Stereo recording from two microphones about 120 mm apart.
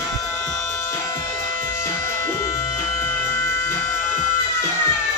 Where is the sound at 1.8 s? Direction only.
20° left (ahead or behind).